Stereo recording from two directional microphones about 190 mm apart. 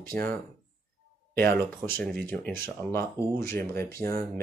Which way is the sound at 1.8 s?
50° right (ahead or behind).